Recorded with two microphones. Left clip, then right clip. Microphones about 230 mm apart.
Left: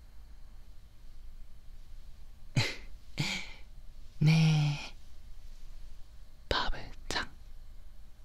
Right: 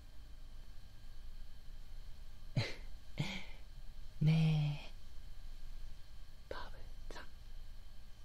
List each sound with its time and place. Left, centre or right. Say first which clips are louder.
2.5 s throat clearing: left 9 dB; left
4.2 s a sound: left 8 dB; left
6.5 s whispering: left 16 dB; left